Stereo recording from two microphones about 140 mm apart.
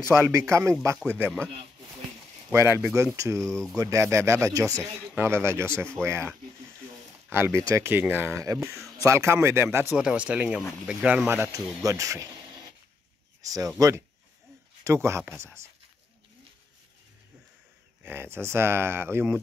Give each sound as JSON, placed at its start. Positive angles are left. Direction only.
{"t": 0.1, "sound": "speech", "side_deg": -20}
{"t": 2.5, "sound": "speech", "side_deg": -20}
{"t": 7.2, "sound": "speech", "side_deg": -15}
{"t": 9.9, "sound": "speech", "side_deg": -10}
{"t": 13.4, "sound": "a sound", "side_deg": -25}
{"t": 13.7, "sound": "speech", "side_deg": -20}
{"t": 18.0, "sound": "speech", "side_deg": -15}